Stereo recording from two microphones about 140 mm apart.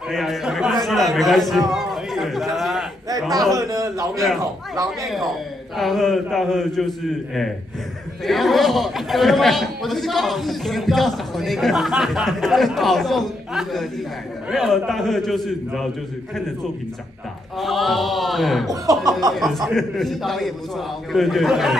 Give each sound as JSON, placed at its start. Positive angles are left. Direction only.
{"t": 0.1, "sound": "a man's voice", "side_deg": 0}
{"t": 3.5, "sound": "a man's voice", "side_deg": -25}
{"t": 5.0, "sound": "a man's voice", "side_deg": 0}
{"t": 17.6, "sound": "a man's voice", "side_deg": 0}
{"t": 18.7, "sound": "a man's voice", "side_deg": -25}
{"t": 19.3, "sound": "a man's voice", "side_deg": 0}